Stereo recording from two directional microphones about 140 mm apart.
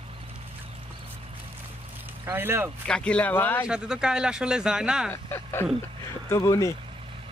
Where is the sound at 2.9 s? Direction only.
10° left (ahead or behind).